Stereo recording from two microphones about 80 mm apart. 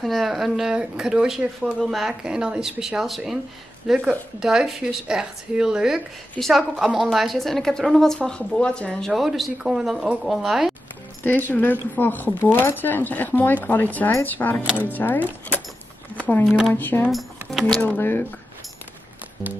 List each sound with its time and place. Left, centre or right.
0.0 s a woman's voice: centre
9.1 s a woman's voice: centre
11.2 s speech: left
16.4 s a woman's voice: centre
16.7 s speech: left
17.1 s speech: centre
17.8 s speech: left